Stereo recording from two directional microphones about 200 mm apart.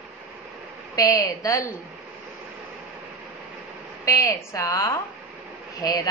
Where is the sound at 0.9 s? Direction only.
15° left (ahead or behind).